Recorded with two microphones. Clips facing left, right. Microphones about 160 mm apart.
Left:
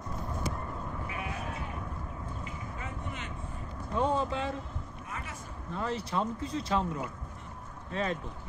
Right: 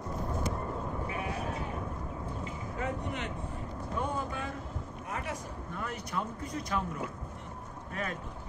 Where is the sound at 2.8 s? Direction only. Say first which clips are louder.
Right 8 dB; 65° right (ahead or behind).